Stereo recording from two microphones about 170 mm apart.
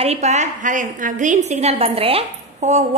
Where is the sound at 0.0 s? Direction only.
40° right (ahead or behind).